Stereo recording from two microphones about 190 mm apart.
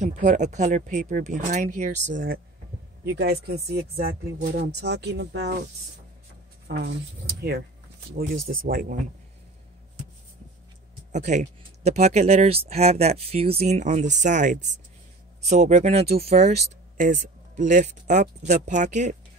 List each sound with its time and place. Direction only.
0.0 s speech: 40° right (ahead or behind); by 5.6 s 60° right (ahead or behind)
6.7 s speech: 60° right (ahead or behind)
11.1 s speech: 40° right (ahead or behind)